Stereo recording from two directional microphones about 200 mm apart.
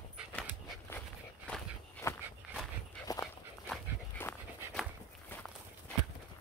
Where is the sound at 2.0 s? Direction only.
15° left (ahead or behind).